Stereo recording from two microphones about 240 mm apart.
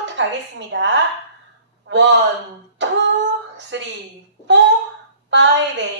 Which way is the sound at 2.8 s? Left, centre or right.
Right.